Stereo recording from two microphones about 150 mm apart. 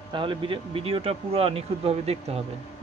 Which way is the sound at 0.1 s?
35° right (ahead or behind).